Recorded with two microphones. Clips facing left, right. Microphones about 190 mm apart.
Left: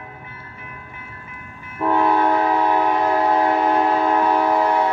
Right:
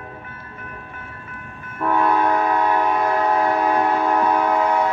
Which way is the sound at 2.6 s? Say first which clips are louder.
Left 1 dB; 10° left (ahead or behind).